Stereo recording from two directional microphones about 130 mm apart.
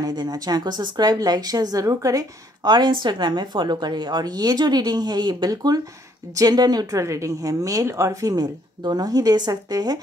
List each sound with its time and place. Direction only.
0.0 s a woman's voice: 30° right (ahead or behind)